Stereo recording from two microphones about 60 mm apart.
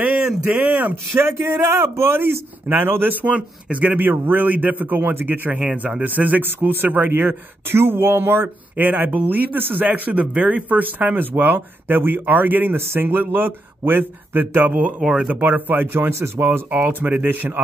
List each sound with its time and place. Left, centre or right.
0.4 s speech: right
1.1 s speech: right
15.0 s speech: centre
15.4 s speech: right